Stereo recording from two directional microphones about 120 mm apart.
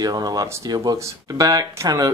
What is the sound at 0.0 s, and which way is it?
Speech, 35° right (ahead or behind).